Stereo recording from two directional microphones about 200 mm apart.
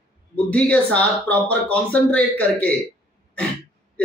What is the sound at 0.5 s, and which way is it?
A man's voice, 5° left (ahead or behind).